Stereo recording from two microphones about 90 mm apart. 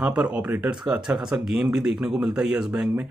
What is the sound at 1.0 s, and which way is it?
Speech, 5° right (ahead or behind).